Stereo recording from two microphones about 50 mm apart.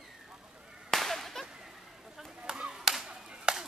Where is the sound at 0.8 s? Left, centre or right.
Centre.